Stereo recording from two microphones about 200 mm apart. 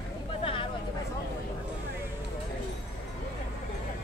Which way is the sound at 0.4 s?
25° left (ahead or behind).